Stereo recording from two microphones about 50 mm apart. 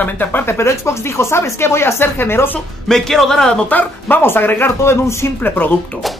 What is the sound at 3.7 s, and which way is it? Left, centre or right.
Speech, left.